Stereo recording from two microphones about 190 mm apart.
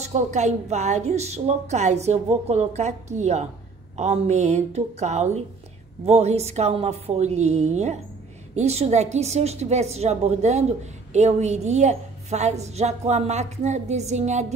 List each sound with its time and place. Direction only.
0.0 s speech: 40° right (ahead or behind)